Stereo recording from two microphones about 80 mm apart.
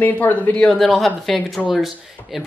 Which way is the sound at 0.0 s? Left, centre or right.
Left.